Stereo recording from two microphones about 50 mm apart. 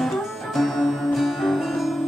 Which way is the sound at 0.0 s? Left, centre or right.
Centre.